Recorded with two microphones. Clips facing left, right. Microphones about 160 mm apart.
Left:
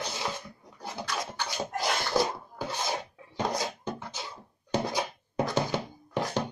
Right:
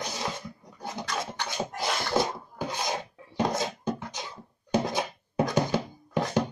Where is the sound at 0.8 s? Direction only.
25° right (ahead or behind).